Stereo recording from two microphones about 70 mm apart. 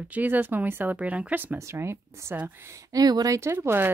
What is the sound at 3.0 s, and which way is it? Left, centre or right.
Speech, right.